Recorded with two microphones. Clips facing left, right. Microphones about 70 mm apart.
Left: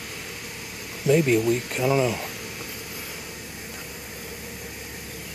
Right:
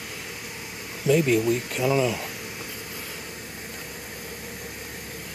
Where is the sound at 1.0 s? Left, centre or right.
Left.